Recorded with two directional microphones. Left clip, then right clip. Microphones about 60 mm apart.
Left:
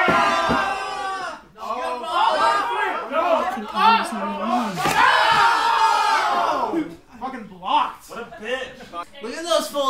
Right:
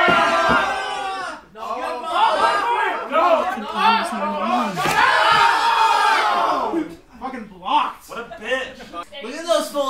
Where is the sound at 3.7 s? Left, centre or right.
Centre.